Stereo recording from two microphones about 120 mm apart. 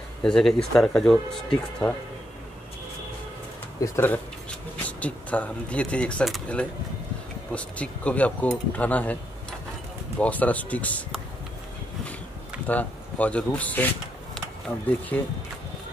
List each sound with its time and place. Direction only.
0.2 s speech: 5° left (ahead or behind)
3.8 s speech: 20° left (ahead or behind)
7.5 s speech: 10° left (ahead or behind)
12.6 s speech: 10° left (ahead or behind)